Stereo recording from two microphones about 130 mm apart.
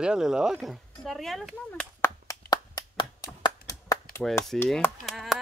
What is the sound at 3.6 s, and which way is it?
Chop, 25° left (ahead or behind).